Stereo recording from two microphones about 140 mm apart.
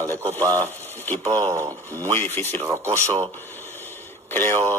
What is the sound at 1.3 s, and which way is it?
Speech, 30° right (ahead or behind).